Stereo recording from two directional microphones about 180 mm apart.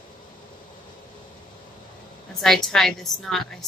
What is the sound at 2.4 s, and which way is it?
A woman's voice, centre (ahead or behind).